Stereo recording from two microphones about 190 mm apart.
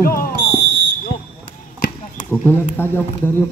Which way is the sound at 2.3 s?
10° left (ahead or behind).